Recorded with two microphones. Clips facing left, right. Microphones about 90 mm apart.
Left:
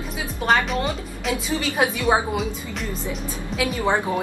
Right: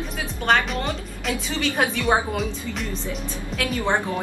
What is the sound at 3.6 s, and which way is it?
Speech, 10° left (ahead or behind).